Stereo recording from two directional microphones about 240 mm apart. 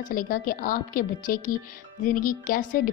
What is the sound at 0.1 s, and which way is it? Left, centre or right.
Speech, left.